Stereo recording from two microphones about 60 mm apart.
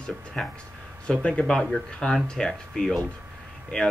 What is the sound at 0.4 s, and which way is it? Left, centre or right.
Speech, centre.